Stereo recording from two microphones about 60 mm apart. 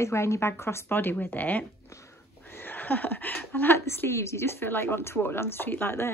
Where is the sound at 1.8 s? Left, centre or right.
Left.